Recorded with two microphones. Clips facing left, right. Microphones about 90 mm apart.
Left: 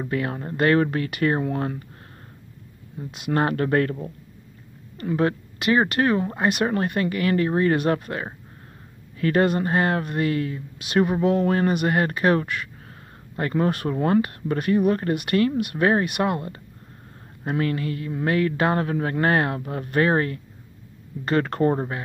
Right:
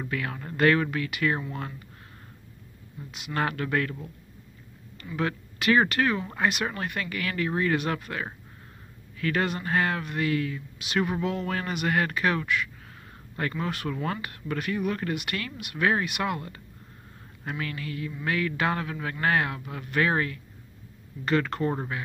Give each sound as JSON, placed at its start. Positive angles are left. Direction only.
{"t": 0.0, "sound": "speech", "side_deg": 35}
{"t": 1.4, "sound": "speech", "side_deg": 55}
{"t": 3.0, "sound": "speech", "side_deg": 30}
{"t": 5.6, "sound": "speech", "side_deg": 25}
{"t": 17.5, "sound": "speech", "side_deg": 40}